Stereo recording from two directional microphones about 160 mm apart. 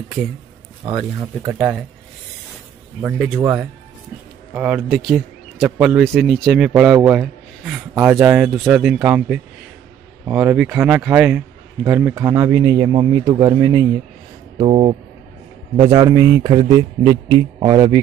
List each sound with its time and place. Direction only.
0.8 s speech: 25° right (ahead or behind)
3.3 s a man's voice: 15° right (ahead or behind)
14.6 s speech: 35° right (ahead or behind)
15.8 s speech: 25° right (ahead or behind)